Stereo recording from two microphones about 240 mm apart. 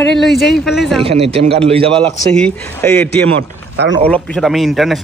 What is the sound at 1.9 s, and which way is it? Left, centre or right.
A man's voice, centre.